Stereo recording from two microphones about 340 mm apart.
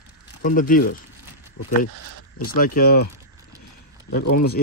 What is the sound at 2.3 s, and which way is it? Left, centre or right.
Speech, left.